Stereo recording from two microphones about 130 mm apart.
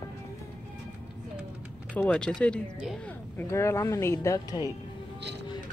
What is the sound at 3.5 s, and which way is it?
Speech, 20° left (ahead or behind).